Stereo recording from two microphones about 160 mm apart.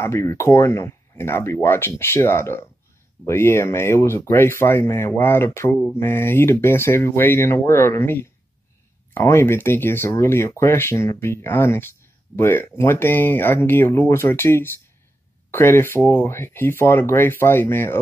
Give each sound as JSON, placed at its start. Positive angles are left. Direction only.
{"t": 0.0, "sound": "speech", "side_deg": 15}